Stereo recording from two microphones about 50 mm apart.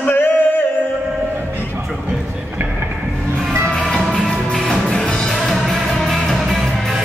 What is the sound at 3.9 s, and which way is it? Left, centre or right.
Music, centre.